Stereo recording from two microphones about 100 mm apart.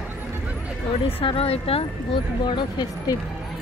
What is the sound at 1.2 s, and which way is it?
Speech, 70° left (ahead or behind).